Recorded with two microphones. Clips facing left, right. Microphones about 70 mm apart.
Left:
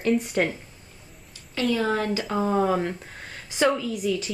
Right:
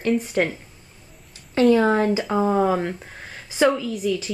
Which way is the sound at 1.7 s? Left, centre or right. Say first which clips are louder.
Right 6 dB; right.